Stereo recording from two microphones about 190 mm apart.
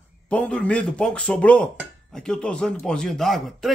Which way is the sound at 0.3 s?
5° left (ahead or behind).